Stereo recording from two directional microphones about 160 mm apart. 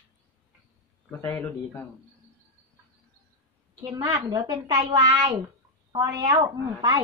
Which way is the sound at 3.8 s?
25° right (ahead or behind).